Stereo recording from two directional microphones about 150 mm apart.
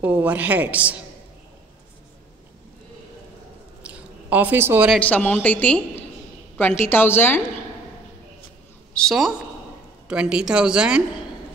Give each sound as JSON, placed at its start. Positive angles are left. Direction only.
{"t": 0.0, "sound": "a woman's voice", "side_deg": -10}
{"t": 3.8, "sound": "a sound", "side_deg": -10}
{"t": 4.9, "sound": "a woman's voice", "side_deg": 10}
{"t": 8.9, "sound": "a woman's voice", "side_deg": 0}